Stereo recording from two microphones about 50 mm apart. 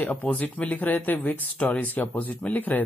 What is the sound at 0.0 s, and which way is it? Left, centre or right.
Speech, left.